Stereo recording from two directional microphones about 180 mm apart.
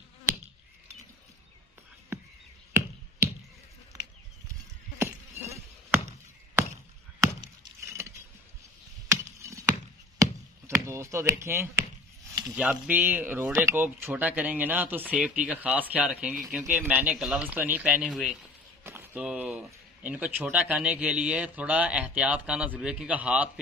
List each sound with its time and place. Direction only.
4.9 s a sound: 15° right (ahead or behind)
6.6 s chop: 15° right (ahead or behind)
9.1 s chop: 15° right (ahead or behind)
12.4 s speech: 5° right (ahead or behind)